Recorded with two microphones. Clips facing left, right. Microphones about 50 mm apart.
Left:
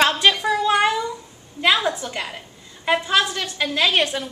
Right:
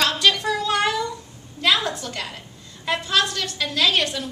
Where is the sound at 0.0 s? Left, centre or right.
Left.